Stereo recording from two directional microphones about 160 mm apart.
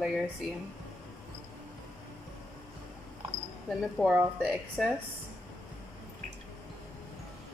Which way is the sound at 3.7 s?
Centre (ahead or behind).